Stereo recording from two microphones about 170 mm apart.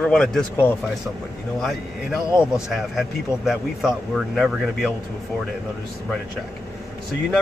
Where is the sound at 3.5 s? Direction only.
Centre (ahead or behind).